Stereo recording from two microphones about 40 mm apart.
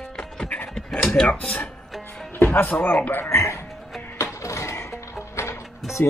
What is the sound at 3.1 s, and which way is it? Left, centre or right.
Speech, left.